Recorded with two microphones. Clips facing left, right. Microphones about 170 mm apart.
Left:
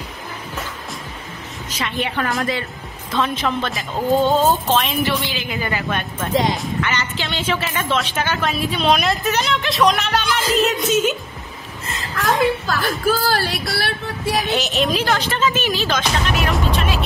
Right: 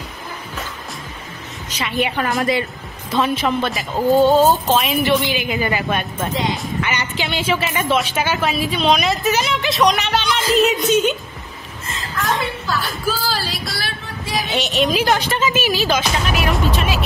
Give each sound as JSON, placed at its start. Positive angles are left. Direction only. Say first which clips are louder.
{"t": 1.7, "sound": "a woman's voice", "louder": "even", "side_deg": 0}
{"t": 2.0, "sound": "a woman's voice", "louder": "right 3 dB", "side_deg": -15}
{"t": 11.9, "sound": "music", "louder": "left 2 dB", "side_deg": 45}
{"t": 14.5, "sound": "a woman's voice", "louder": "right 5 dB", "side_deg": 0}
{"t": 15.0, "sound": "speech", "louder": "right 1 dB", "side_deg": -15}